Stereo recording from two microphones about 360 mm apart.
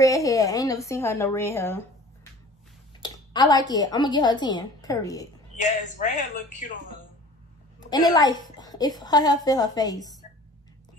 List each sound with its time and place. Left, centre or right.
0.0 s a child's voice: centre
3.0 s a woman's voice: centre
5.6 s speech: centre
7.9 s a child's voice: centre